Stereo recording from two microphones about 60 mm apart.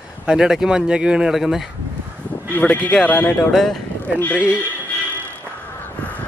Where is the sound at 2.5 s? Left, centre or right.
Left.